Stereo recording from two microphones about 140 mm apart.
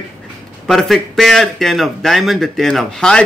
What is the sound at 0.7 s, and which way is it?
A man's voice, centre (ahead or behind).